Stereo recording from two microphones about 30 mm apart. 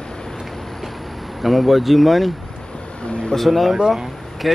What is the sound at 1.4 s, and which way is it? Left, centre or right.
Speech, centre.